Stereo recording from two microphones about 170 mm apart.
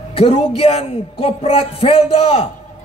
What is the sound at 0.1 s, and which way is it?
A man's voice, 35° left (ahead or behind).